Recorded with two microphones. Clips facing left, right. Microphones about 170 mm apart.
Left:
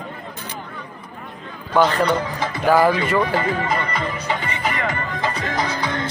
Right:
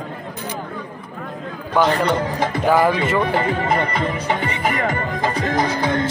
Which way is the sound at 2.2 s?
50° right (ahead or behind).